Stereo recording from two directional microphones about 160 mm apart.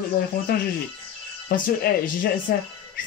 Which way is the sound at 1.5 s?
65° left (ahead or behind).